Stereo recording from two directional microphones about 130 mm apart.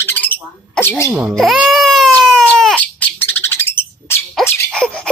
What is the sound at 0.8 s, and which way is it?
Speech, 15° left (ahead or behind).